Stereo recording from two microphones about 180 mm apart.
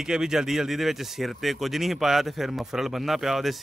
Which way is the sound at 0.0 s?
5° right (ahead or behind).